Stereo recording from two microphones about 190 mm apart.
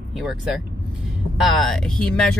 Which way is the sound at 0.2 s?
Centre (ahead or behind).